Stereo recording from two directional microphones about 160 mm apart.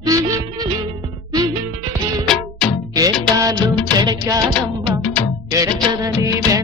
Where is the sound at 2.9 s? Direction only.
20° right (ahead or behind).